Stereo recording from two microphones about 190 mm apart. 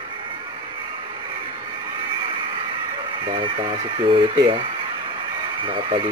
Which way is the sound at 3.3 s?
25° right (ahead or behind).